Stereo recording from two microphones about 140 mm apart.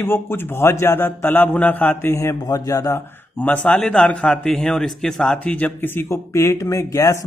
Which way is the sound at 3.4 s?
10° left (ahead or behind).